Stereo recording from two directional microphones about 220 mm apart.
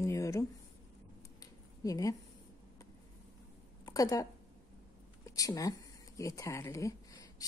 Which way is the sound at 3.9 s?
15° left (ahead or behind).